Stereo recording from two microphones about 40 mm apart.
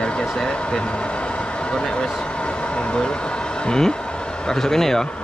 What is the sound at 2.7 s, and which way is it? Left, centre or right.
Vehicle, left.